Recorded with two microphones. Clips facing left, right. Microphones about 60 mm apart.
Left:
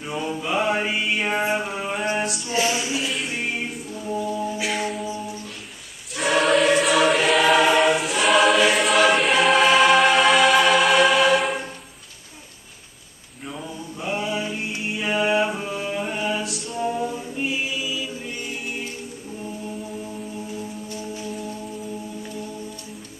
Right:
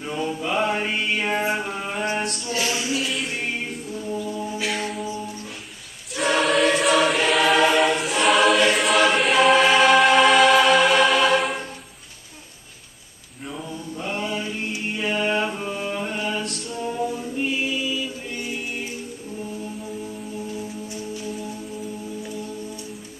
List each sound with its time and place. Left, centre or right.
0.0 s mantra: centre
2.4 s a sound: centre
3.1 s music: centre
4.6 s music: centre
6.1 s choir: centre
13.5 s mantra: centre